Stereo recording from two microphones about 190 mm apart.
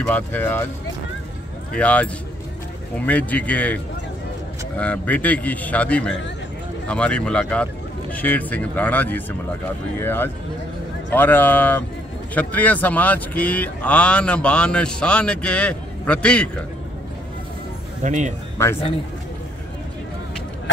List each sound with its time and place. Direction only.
0.0 s speech: 10° left (ahead or behind)
1.7 s speech: 5° left (ahead or behind)
3.1 s speech: 10° left (ahead or behind)
18.0 s speech: 40° right (ahead or behind)